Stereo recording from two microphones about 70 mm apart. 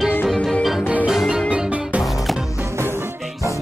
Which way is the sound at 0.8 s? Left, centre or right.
Centre.